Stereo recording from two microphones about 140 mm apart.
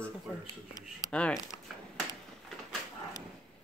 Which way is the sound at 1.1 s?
10° left (ahead or behind).